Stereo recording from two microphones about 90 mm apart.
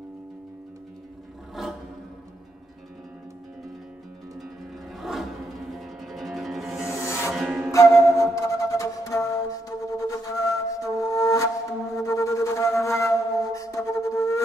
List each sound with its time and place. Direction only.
1.5 s music: 5° right (ahead or behind)
4.9 s music: centre (ahead or behind)
8.2 s flute: 35° left (ahead or behind)